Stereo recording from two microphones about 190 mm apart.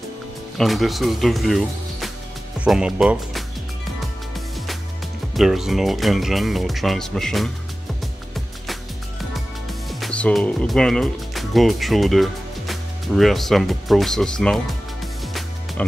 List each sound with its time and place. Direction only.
0.6 s speech: centre (ahead or behind)
5.3 s speech: centre (ahead or behind)
9.8 s speech: centre (ahead or behind)